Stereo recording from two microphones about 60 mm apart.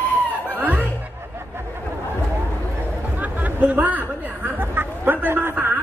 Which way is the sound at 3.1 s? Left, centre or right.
Right.